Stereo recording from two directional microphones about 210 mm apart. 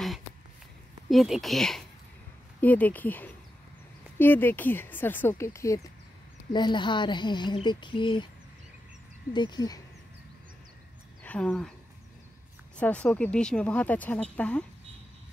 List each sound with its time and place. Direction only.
1.1 s speech: centre (ahead or behind); by 8.3 s 20° left (ahead or behind)
9.3 s speech: 20° left (ahead or behind)
11.2 s speech: 5° left (ahead or behind)
12.7 s speech: 5° left (ahead or behind)